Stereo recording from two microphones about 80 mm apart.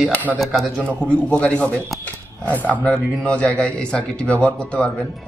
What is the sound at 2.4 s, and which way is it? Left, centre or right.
Speech, centre.